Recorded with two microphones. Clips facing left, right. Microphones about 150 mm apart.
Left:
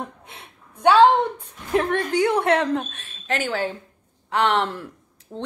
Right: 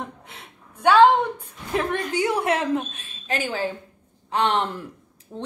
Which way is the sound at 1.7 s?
Centre (ahead or behind).